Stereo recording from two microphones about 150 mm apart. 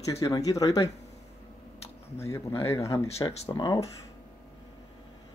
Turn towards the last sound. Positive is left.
turn(degrees=30)  # may be behind; listen again after turning